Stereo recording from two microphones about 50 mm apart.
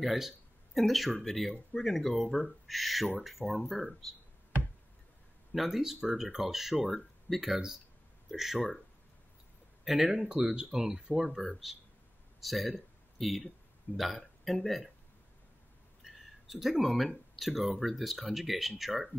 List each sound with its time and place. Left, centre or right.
0.0 s speech: centre
5.5 s speech: centre
9.9 s speech: centre
10.2 s speech: centre
11.2 s speech: centre
12.4 s a sound: centre
13.9 s speech: centre
16.0 s a sound: centre
16.8 s speech: centre